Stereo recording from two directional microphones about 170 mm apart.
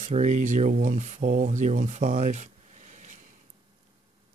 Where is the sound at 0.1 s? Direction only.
45° right (ahead or behind).